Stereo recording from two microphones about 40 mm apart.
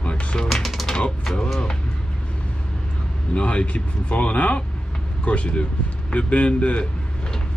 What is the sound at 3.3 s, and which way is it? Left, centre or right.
Speech, left.